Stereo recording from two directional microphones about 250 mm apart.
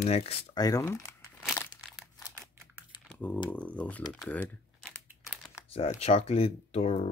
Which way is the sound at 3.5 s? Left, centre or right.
Centre.